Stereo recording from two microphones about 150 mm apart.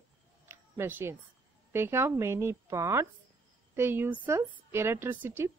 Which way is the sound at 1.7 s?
15° right (ahead or behind).